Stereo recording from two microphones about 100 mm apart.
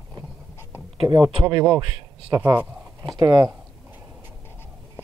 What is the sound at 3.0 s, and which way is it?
Speech, 45° right (ahead or behind).